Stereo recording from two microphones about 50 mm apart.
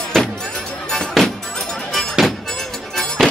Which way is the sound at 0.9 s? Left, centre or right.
Centre.